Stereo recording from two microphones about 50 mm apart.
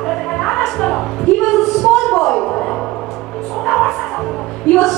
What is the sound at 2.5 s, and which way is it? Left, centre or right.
Music, centre.